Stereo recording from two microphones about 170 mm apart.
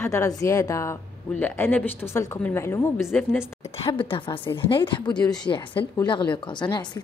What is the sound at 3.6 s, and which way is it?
A woman's voice, 35° left (ahead or behind).